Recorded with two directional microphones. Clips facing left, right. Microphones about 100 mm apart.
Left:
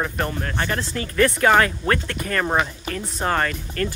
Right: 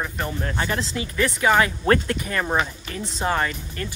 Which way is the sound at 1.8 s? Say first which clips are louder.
Right 3 dB; 25° right (ahead or behind).